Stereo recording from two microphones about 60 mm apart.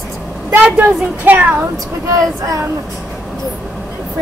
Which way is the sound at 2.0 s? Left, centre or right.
Right.